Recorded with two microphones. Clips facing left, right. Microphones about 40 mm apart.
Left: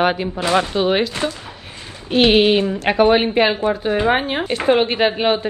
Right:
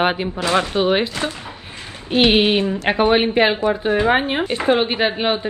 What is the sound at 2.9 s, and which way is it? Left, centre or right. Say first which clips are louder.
Speech: left 2 dB; centre.